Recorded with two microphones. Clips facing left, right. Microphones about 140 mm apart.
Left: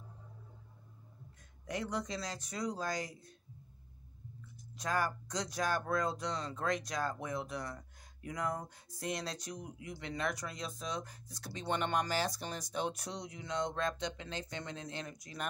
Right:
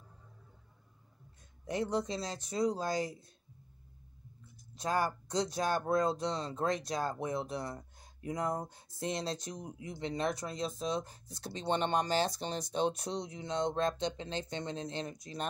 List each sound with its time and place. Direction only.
1.7 s speech: 30° right (ahead or behind)
4.7 s speech: 30° right (ahead or behind)